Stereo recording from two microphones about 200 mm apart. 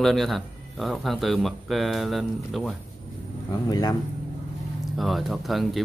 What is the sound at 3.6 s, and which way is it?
Speech, 20° left (ahead or behind).